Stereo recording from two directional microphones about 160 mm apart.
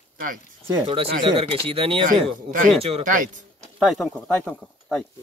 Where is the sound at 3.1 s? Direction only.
55° right (ahead or behind).